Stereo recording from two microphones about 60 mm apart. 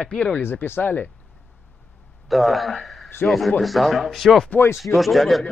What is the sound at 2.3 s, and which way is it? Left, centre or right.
Speech, centre.